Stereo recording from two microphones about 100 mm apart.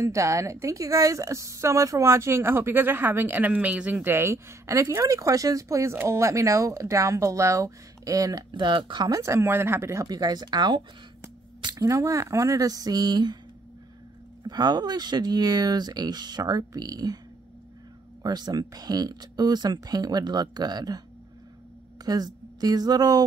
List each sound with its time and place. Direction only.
0.0 s a woman's voice: 30° right (ahead or behind); by 9.2 s 45° right (ahead or behind)
9.2 s a woman's voice: 25° right (ahead or behind)
10.0 s speech: 40° right (ahead or behind)
14.4 s speech: 45° right (ahead or behind)
18.2 s speech: 45° right (ahead or behind)
22.0 s speech: 40° right (ahead or behind)